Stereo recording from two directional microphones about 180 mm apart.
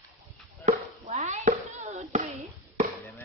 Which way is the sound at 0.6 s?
40° right (ahead or behind).